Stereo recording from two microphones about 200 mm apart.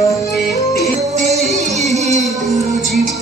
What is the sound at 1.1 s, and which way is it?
Music, 35° right (ahead or behind).